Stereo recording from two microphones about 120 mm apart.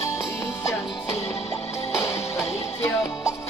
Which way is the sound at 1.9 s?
25° left (ahead or behind).